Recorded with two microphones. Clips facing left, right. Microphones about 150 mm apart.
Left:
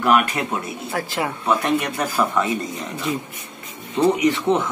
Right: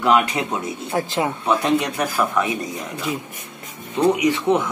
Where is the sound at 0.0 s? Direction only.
20° right (ahead or behind).